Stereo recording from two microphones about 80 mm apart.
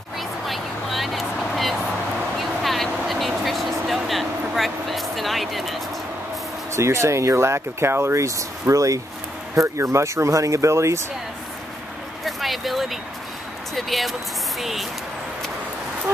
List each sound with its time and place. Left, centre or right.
0.5 s vehicle: centre
6.7 s speech: right
12.3 s speech: centre